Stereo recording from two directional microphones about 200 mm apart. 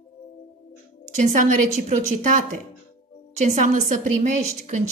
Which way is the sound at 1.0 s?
35° right (ahead or behind).